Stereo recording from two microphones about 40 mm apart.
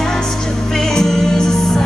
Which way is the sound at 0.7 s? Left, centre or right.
Centre.